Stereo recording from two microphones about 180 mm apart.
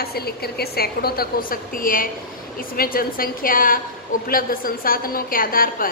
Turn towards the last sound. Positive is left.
turn(degrees=50)  # may be behind; listen again after turning